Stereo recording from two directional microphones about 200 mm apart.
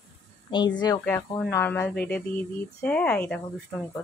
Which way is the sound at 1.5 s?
10° left (ahead or behind).